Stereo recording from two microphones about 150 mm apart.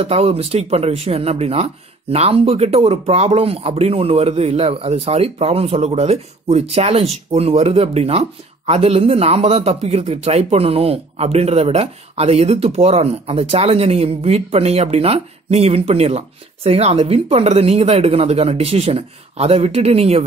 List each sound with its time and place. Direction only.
0.0 s speech: 40° right (ahead or behind)